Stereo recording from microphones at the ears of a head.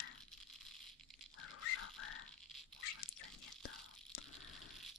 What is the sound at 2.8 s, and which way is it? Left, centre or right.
Whispering, left.